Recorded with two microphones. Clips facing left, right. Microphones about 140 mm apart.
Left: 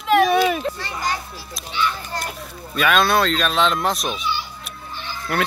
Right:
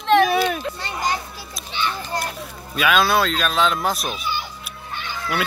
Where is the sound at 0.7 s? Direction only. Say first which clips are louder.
Right 1 dB; 20° right (ahead or behind).